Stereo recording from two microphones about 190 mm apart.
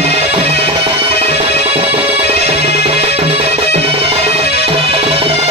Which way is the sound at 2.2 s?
35° right (ahead or behind).